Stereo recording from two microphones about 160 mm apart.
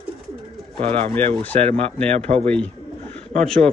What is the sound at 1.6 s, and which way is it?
Speech, 40° right (ahead or behind).